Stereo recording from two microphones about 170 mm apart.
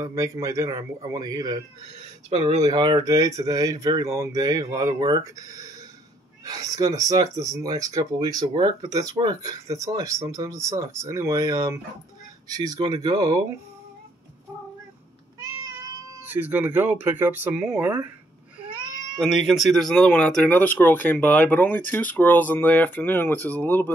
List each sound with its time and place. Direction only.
0.0 s speech: 20° right (ahead or behind)
2.2 s speech: 40° right (ahead or behind)
2.6 s speech: 25° right (ahead or behind)
16.2 s speech: 10° right (ahead or behind)
19.1 s speech: centre (ahead or behind)